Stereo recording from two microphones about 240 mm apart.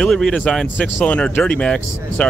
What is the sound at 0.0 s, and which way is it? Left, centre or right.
Speech, centre.